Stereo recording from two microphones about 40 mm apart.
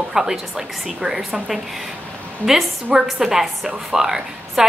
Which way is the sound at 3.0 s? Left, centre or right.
Centre.